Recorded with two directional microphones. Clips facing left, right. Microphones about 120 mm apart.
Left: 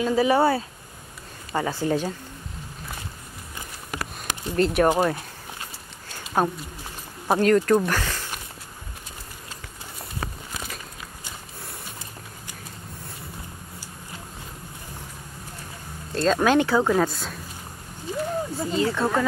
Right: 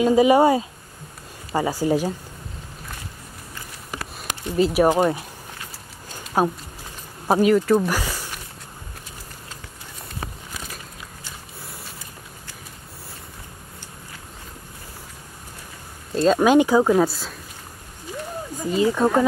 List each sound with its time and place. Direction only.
0.0 s speech: 15° right (ahead or behind)
4.6 s speech: 5° right (ahead or behind)
6.4 s speech: 10° right (ahead or behind)
16.2 s speech: 10° right (ahead or behind)
18.1 s a sound: 25° left (ahead or behind)
18.7 s speech: 15° right (ahead or behind)